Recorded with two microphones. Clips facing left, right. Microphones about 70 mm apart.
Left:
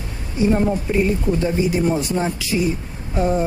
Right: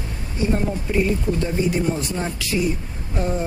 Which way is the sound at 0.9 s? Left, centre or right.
Centre.